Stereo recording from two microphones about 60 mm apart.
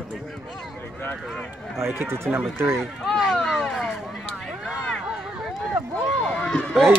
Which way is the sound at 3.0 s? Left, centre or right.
Centre.